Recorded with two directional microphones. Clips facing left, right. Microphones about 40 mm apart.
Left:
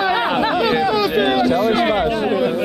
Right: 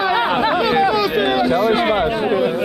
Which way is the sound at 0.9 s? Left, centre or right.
Centre.